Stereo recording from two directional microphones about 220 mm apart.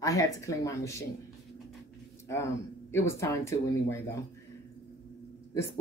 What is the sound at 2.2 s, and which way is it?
Speech, 10° left (ahead or behind).